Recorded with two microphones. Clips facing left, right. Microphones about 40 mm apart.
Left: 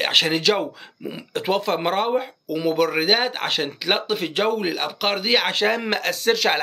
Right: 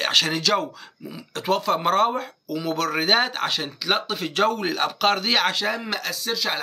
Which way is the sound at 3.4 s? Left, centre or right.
Left.